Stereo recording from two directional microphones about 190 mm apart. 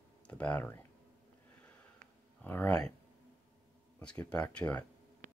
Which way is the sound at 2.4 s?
10° left (ahead or behind).